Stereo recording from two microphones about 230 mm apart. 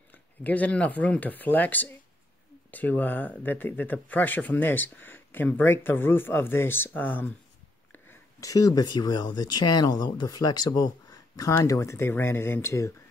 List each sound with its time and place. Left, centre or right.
0.1 s speech: centre